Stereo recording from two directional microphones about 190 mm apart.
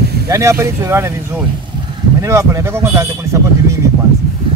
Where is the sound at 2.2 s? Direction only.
15° right (ahead or behind).